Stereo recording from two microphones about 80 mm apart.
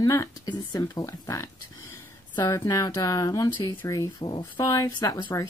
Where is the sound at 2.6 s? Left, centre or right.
Left.